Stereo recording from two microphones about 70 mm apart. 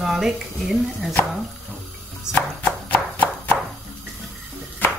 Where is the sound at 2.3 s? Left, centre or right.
Left.